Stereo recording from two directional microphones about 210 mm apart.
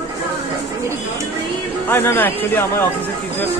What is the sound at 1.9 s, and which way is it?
Speech, 10° left (ahead or behind).